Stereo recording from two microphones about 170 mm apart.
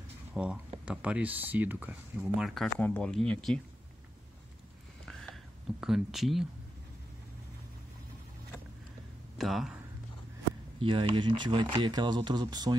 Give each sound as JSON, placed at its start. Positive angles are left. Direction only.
{"t": 0.3, "sound": "speech", "side_deg": -5}
{"t": 5.0, "sound": "a sound", "side_deg": 0}
{"t": 9.4, "sound": "speech", "side_deg": 0}
{"t": 10.8, "sound": "speech", "side_deg": -30}